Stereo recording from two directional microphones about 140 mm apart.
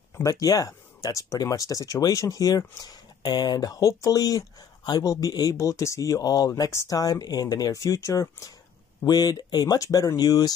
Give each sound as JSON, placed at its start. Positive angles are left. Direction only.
{"t": 0.2, "sound": "speech", "side_deg": 25}